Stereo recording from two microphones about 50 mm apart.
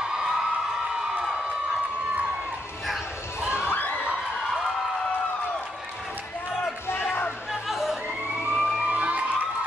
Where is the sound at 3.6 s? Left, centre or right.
Left.